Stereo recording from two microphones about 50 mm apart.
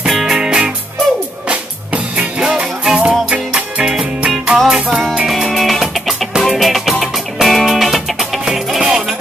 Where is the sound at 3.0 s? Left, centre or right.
Right.